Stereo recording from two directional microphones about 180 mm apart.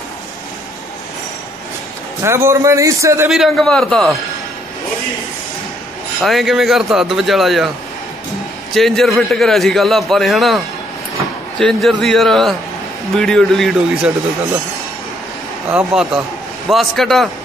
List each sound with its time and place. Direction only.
2.2 s a man's voice: 15° right (ahead or behind)
3.3 s a man's voice: centre (ahead or behind)
6.2 s a man's voice: centre (ahead or behind)
8.7 s a man's voice: centre (ahead or behind)
11.6 s a man's voice: centre (ahead or behind)
15.7 s a man's voice: 5° right (ahead or behind)